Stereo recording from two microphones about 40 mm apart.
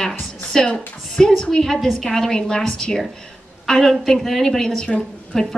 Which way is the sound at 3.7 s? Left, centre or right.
Centre.